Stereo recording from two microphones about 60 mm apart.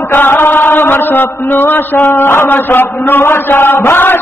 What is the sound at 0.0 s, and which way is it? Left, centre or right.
Mantra, left.